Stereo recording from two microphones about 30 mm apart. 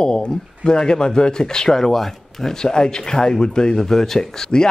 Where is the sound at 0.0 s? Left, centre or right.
Left; by 2.5 s centre.